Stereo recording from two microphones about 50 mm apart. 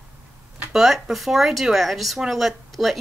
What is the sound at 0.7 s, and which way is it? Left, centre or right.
Speech, centre.